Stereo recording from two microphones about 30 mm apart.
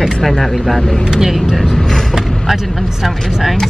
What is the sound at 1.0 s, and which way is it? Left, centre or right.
Speech, centre.